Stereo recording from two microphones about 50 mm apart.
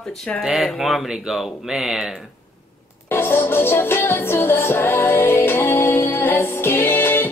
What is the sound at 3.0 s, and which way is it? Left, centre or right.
Music, left.